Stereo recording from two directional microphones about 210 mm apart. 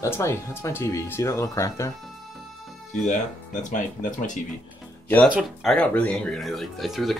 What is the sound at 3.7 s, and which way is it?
Speech, 35° left (ahead or behind).